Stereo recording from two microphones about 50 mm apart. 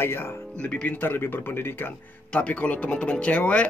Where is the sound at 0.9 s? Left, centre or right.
Left.